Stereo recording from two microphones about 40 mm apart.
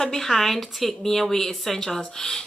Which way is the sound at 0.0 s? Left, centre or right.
Centre.